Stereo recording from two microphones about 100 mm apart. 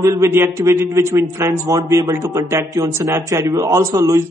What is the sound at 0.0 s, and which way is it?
A man's voice, 30° right (ahead or behind).